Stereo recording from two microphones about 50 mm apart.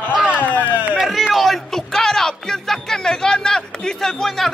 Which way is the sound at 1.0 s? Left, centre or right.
Centre.